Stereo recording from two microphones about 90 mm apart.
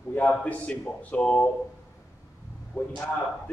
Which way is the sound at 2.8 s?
25° left (ahead or behind).